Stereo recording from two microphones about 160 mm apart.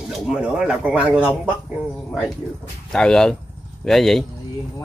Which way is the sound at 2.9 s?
5° left (ahead or behind).